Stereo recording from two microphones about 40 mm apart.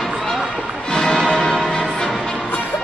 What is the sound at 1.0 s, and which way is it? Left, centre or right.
Music, centre.